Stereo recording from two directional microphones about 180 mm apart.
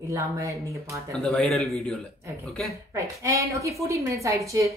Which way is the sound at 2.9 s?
15° right (ahead or behind).